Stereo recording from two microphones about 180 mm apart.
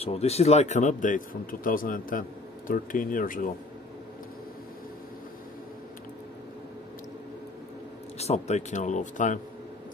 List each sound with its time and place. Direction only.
0.0 s speech: 35° left (ahead or behind)
8.2 s speech: 35° left (ahead or behind)